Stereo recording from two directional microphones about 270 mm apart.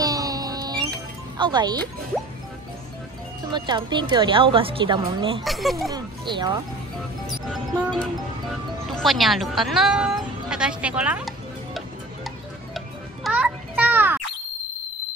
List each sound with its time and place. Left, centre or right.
0.0 s music: centre
1.4 s a woman's voice: centre
3.5 s a woman's voice: centre
5.4 s speech: centre
5.9 s a woman's voice: centre
8.9 s speech: centre
12.7 s music: centre